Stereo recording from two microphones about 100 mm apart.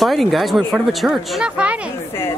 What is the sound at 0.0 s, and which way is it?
A woman's voice, centre (ahead or behind).